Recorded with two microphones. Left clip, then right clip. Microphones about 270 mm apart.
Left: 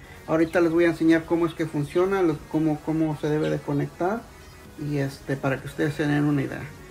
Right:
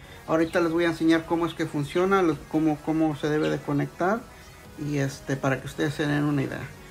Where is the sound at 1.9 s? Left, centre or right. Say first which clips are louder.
Even; centre.